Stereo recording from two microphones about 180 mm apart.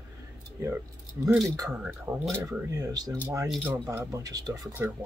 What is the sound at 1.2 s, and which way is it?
Speech, 15° right (ahead or behind).